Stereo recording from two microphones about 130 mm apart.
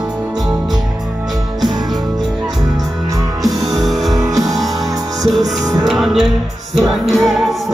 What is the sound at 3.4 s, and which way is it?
Music, centre (ahead or behind).